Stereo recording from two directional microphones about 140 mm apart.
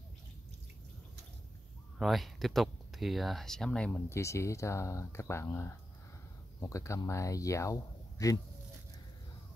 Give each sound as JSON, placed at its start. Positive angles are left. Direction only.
{"t": 2.0, "sound": "speech", "side_deg": 0}
{"t": 4.1, "sound": "speech", "side_deg": 20}